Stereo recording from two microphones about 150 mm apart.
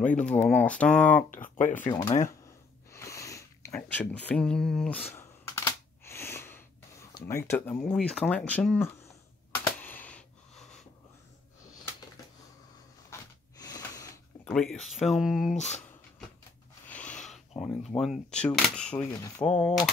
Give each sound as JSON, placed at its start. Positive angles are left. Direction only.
{"t": 0.2, "sound": "speech", "side_deg": 10}
{"t": 1.3, "sound": "speech", "side_deg": 60}
{"t": 1.9, "sound": "speech", "side_deg": 30}
{"t": 2.9, "sound": "a sound", "side_deg": 20}
{"t": 7.2, "sound": "speech", "side_deg": 20}
{"t": 9.7, "sound": "a sound", "side_deg": 10}
{"t": 13.1, "sound": "snort", "side_deg": 25}
{"t": 14.4, "sound": "speech", "side_deg": 5}
{"t": 15.5, "sound": "speech", "side_deg": 50}
{"t": 16.8, "sound": "speech", "side_deg": 10}
{"t": 19.4, "sound": "speech", "side_deg": 5}